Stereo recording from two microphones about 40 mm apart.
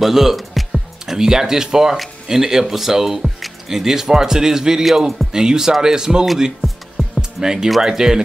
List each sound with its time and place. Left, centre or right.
0.0 s speech: centre
5.3 s speech: centre
7.2 s music: centre
7.7 s speech: centre